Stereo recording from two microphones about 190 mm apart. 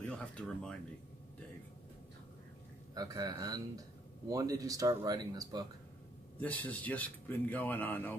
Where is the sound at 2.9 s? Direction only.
20° right (ahead or behind).